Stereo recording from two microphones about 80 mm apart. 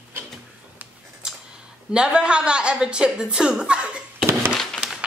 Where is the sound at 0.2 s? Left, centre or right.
Right.